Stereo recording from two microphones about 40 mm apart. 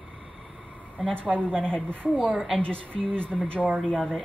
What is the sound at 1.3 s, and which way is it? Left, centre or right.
Speech, right.